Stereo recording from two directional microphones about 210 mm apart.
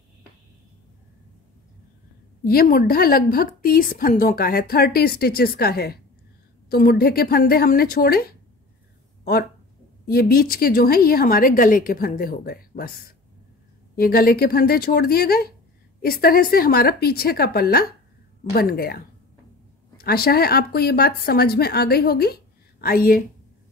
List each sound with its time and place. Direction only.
2.4 s a woman's voice: 45° left (ahead or behind)